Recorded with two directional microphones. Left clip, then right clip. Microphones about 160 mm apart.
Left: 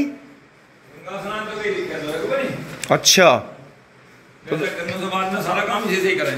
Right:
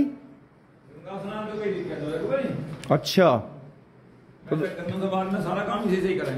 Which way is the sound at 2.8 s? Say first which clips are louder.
Left 7 dB; 10° right (ahead or behind).